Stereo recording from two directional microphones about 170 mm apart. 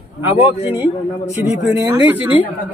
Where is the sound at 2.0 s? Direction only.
10° right (ahead or behind).